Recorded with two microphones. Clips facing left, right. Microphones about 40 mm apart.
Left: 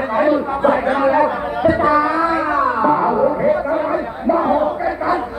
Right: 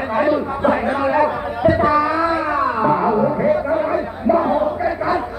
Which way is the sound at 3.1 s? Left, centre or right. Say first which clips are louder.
Left 1 dB; centre.